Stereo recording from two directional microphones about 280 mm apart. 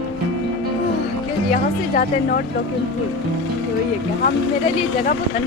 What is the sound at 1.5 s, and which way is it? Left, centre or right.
Music, left.